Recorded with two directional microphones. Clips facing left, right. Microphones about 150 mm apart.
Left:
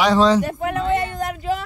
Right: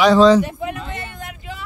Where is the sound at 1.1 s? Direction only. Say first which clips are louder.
Left 10 dB; 40° left (ahead or behind).